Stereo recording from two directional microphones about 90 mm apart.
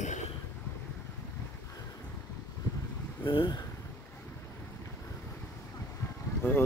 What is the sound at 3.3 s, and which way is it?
Speech, 65° left (ahead or behind).